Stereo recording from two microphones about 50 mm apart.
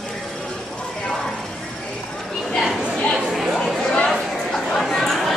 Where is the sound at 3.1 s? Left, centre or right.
Centre.